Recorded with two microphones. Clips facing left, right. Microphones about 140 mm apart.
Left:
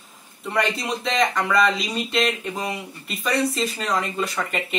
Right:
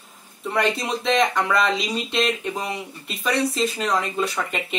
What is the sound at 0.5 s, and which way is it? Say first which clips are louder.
Speech: right 1 dB; centre (ahead or behind).